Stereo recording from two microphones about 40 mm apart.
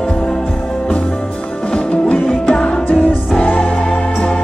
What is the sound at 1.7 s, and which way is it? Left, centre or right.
Music, left.